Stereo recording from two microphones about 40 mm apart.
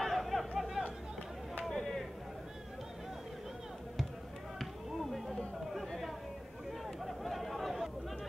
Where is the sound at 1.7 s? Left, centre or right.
Centre.